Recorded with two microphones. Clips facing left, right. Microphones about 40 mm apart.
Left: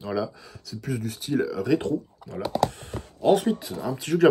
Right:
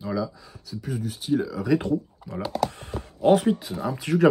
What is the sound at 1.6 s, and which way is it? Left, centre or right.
Speech, centre.